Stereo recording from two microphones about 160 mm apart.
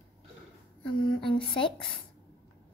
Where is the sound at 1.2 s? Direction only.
30° left (ahead or behind).